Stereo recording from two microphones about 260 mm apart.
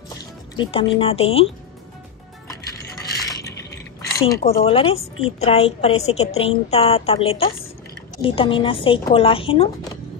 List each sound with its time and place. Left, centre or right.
0.6 s a woman's voice: left
3.2 s coin: centre
4.0 s chink: centre
4.6 s a woman's voice: left